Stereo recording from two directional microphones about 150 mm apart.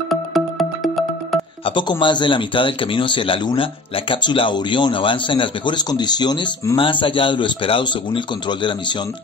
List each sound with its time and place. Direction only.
0.1 s music: centre (ahead or behind)
1.6 s speech: 35° left (ahead or behind)